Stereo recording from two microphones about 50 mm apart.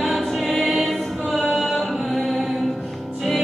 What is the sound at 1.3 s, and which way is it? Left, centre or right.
A capella, centre.